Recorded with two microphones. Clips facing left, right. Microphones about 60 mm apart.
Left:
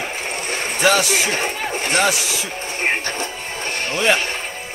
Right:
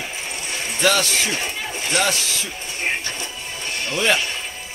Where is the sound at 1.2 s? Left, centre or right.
Left.